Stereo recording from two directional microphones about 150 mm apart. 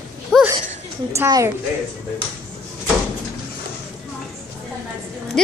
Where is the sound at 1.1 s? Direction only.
20° right (ahead or behind).